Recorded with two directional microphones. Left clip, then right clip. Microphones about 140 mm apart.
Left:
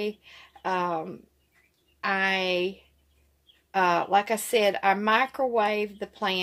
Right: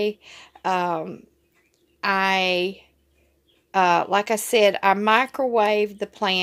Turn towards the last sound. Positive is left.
turn(degrees=-45)  # may be behind; listen again after turning